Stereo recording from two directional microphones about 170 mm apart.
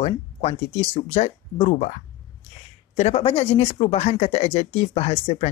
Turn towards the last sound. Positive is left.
turn(degrees=35)  # may be behind; listen again after turning